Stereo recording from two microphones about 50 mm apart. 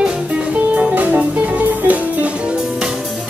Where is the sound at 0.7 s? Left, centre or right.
Right.